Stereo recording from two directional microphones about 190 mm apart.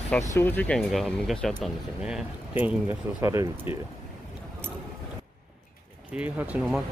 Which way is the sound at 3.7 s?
30° left (ahead or behind).